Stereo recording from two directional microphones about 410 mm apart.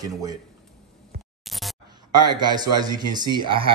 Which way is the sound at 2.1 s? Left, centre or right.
Centre.